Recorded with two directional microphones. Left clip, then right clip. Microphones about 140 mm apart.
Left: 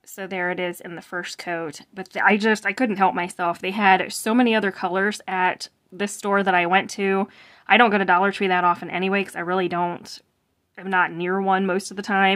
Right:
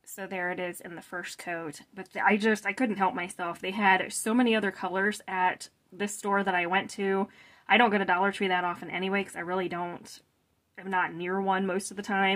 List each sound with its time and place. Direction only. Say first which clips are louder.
0.1 s speech: left 7 dB; 35° left (ahead or behind)